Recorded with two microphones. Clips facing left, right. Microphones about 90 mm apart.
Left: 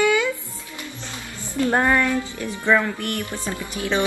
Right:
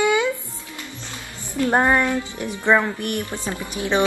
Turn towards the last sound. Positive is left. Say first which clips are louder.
# right 2 dB
turn(degrees=-20)  # may be behind; listen again after turning